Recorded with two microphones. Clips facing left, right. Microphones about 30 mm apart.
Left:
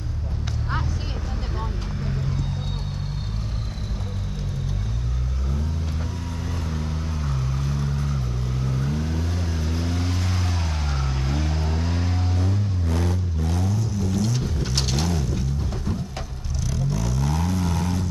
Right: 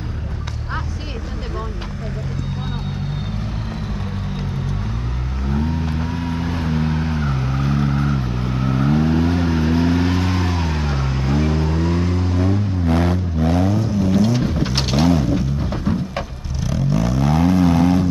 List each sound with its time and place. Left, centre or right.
5.5 s vehicle: right; by 12.4 s centre
12.4 s vehicle: right
12.8 s vehicle: right